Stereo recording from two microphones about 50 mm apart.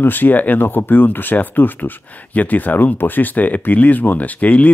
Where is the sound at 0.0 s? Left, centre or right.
Left.